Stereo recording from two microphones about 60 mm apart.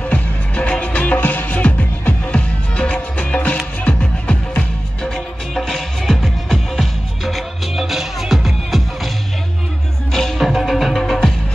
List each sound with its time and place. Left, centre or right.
0.0 s music: left
5.0 s music: centre
10.1 s music: centre